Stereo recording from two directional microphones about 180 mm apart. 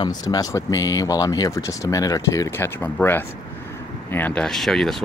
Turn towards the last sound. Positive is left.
turn(degrees=0)  # may be behind; listen again after turning